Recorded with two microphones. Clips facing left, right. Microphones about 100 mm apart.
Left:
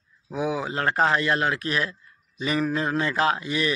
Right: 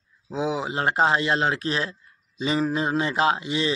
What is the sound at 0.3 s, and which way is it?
A man's voice, 25° right (ahead or behind).